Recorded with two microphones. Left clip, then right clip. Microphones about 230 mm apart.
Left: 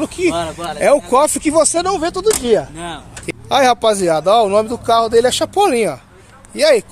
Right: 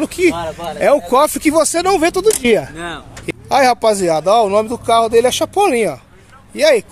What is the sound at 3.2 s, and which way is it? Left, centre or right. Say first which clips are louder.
A man's voice: even; centre.